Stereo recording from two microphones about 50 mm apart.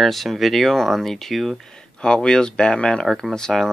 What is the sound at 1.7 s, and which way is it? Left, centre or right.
Speech, centre.